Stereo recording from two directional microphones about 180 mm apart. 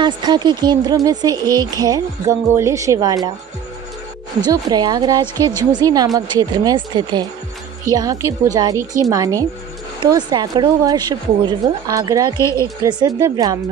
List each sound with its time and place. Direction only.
0.0 s a woman's voice: 25° right (ahead or behind)
4.5 s a woman's voice: 20° right (ahead or behind)
12.4 s a woman's voice: 15° left (ahead or behind)
12.8 s a woman's voice: 20° right (ahead or behind)